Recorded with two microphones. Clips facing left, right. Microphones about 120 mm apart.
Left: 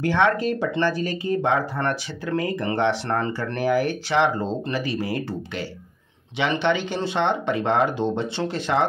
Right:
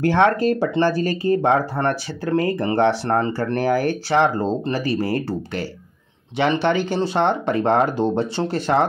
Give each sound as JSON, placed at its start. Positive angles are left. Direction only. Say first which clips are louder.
{"t": 0.0, "sound": "speech", "louder": "right 4 dB", "side_deg": -45}